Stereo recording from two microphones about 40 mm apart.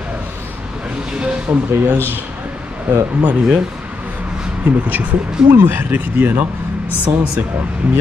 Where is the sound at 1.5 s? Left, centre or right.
Right.